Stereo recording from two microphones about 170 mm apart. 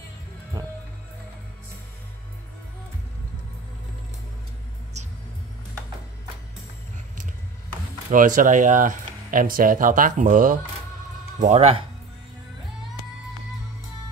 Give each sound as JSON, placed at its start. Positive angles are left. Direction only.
{"t": 8.1, "sound": "speech", "side_deg": -50}
{"t": 11.3, "sound": "speech", "side_deg": -40}